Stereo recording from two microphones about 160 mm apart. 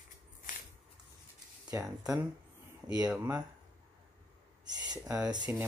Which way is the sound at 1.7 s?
15° right (ahead or behind).